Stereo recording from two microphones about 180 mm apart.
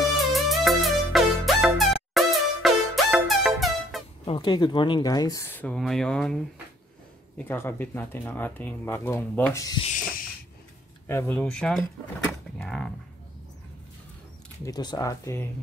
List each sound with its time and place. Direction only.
0.3 s music: centre (ahead or behind)
4.3 s speech: 25° left (ahead or behind); by 6.3 s 5° left (ahead or behind)
7.3 s speech: 10° left (ahead or behind)
11.1 s speech: 10° left (ahead or behind)
14.6 s speech: 20° left (ahead or behind)